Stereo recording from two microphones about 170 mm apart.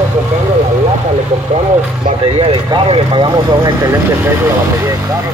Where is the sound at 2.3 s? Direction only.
30° right (ahead or behind).